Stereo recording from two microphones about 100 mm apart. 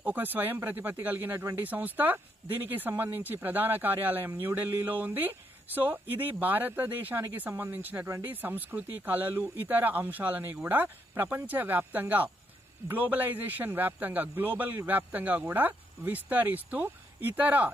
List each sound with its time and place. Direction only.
0.0 s speech: 20° right (ahead or behind)